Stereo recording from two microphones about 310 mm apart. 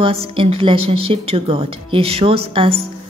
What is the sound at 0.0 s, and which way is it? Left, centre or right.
A woman's voice, centre.